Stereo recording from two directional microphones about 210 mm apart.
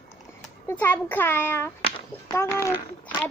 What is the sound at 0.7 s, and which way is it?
A child's voice, 10° left (ahead or behind).